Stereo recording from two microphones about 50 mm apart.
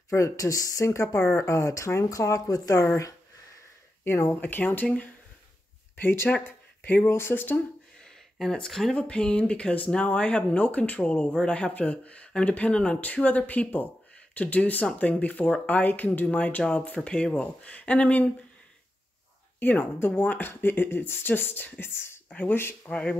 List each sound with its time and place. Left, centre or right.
0.1 s speech: left
4.0 s speech: left
4.4 s speech: left
6.3 s speech: centre
6.8 s speech: left
7.1 s speech: left
8.4 s speech: centre
8.9 s speech: left
19.6 s speech: left
22.8 s speech: left